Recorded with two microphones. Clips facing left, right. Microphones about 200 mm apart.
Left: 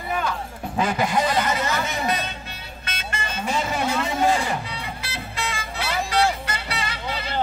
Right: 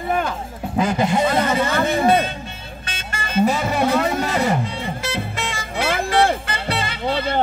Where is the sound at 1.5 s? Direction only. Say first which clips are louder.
Right 6 dB; 55° right (ahead or behind).